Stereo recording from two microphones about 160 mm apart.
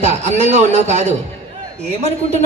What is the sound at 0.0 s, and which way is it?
A man's voice, 45° right (ahead or behind).